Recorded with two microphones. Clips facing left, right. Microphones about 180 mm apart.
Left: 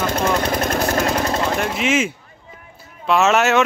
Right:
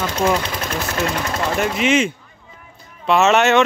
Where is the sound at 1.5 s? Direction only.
Centre (ahead or behind).